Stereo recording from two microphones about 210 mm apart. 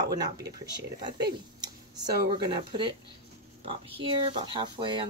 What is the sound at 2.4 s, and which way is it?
Speech, 20° right (ahead or behind).